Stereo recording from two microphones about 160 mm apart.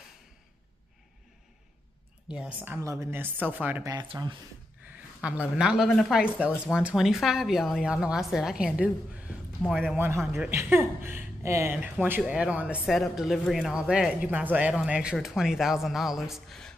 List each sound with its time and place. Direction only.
2.2 s speech: 5° right (ahead or behind)
3.9 s speech: 25° right (ahead or behind)
4.9 s a man's voice: 10° right (ahead or behind)
9.9 s speech: 15° right (ahead or behind); by 16.7 s centre (ahead or behind)